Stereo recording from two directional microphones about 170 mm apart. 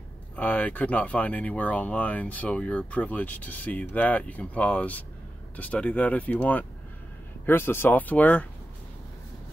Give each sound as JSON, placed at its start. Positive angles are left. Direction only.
{"t": 0.4, "sound": "speech", "side_deg": 10}